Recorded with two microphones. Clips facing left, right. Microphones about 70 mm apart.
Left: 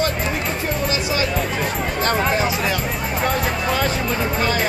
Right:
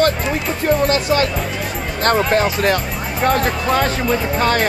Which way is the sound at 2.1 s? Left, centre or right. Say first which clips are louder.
Right 5 dB; right.